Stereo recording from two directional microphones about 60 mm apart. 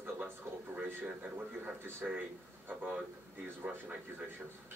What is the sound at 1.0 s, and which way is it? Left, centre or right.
Speech, right.